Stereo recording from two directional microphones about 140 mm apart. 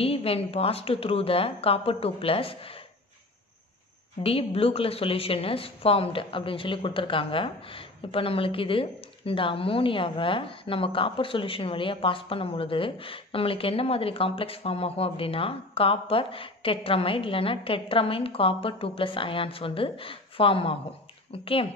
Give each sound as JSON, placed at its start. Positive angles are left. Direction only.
{"t": 0.0, "sound": "a woman's voice", "side_deg": 45}
{"t": 4.2, "sound": "a woman's voice", "side_deg": 45}